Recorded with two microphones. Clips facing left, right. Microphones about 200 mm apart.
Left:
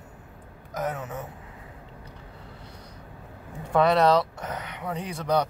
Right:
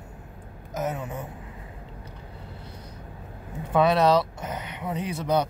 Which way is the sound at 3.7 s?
5° right (ahead or behind).